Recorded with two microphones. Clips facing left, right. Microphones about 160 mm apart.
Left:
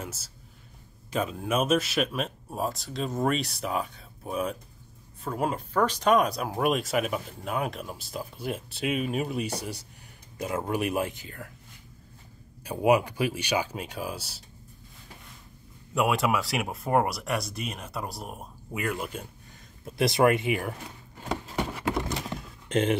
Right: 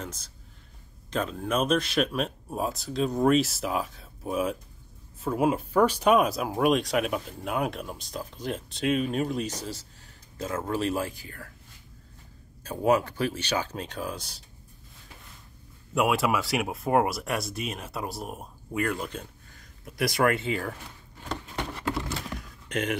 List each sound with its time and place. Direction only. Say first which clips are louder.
0.0 s speech: even; 5° left (ahead or behind)
12.6 s speech: left 1 dB; 15° left (ahead or behind)
15.9 s speech: right 1 dB; centre (ahead or behind)
19.8 s speech: left 3 dB; 25° left (ahead or behind)
21.3 s a sound: left 3 dB; 10° left (ahead or behind); by 22.9 s 25° left (ahead or behind)